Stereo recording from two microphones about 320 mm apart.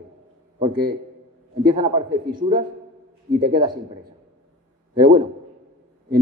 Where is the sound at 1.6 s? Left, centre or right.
Centre.